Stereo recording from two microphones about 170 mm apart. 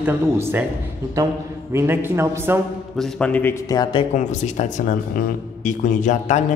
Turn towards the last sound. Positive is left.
turn(degrees=45)  # may be behind; listen again after turning